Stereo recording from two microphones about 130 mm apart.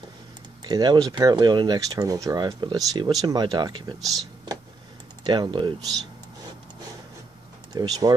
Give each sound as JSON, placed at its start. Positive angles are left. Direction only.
{"t": 0.7, "sound": "speech", "side_deg": -30}
{"t": 7.7, "sound": "speech", "side_deg": -30}